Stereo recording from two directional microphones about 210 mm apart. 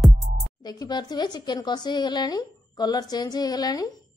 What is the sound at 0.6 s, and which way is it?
Speech, 20° left (ahead or behind).